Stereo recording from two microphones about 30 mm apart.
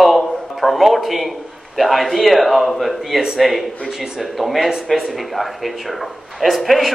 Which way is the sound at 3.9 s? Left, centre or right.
Centre.